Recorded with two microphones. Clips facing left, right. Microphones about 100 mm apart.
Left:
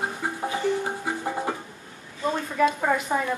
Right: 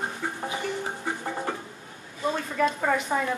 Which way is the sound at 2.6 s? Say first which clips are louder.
Left 3 dB; 5° left (ahead or behind).